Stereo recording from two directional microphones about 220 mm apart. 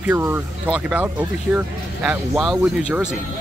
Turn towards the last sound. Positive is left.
turn(degrees=-5)  # may be behind; listen again after turning